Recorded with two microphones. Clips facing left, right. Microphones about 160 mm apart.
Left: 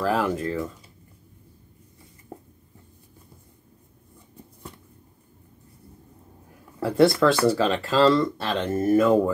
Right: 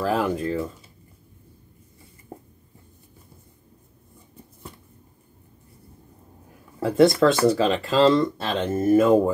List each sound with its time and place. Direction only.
0.0 s speech: 20° right (ahead or behind)
6.8 s speech: 20° right (ahead or behind)